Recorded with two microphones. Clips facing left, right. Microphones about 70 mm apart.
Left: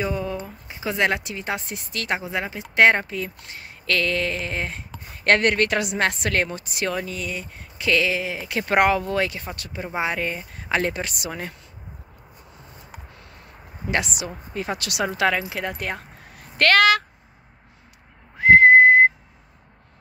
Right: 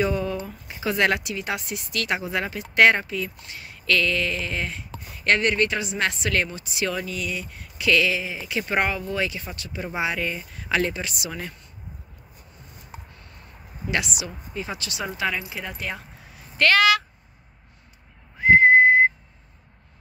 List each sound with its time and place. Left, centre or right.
0.0 s speech: centre
3.0 s speech: left
5.9 s speech: left
8.2 s speech: left
10.9 s speech: left
13.8 s speech: left
14.5 s speech: left
18.4 s whistle: left